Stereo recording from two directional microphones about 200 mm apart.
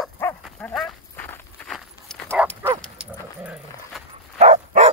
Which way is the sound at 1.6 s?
Centre (ahead or behind).